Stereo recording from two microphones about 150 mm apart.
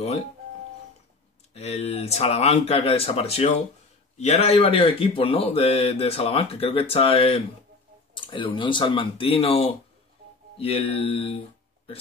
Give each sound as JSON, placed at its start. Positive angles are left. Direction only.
{"t": 1.5, "sound": "speech", "side_deg": 45}